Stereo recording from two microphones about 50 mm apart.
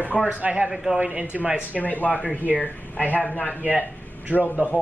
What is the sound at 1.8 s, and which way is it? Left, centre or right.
Speech, left.